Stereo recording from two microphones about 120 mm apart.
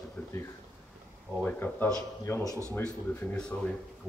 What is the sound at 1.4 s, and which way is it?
Speech, 15° left (ahead or behind).